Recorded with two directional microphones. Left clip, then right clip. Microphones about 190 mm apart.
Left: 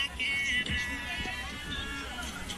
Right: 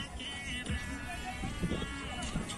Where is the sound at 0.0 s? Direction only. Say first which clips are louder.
Left 11 dB; 55° right (ahead or behind).